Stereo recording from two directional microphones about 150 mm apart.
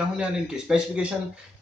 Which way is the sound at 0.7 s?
5° right (ahead or behind).